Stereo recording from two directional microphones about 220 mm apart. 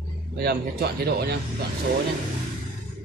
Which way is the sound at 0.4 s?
45° right (ahead or behind).